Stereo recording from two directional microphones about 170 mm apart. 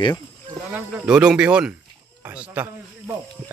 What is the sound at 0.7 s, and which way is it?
Speech, 5° right (ahead or behind).